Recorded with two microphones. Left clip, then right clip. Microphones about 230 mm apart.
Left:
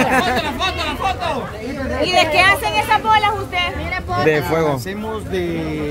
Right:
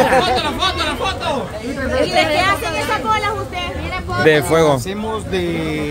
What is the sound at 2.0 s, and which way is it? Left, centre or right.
Speech, left.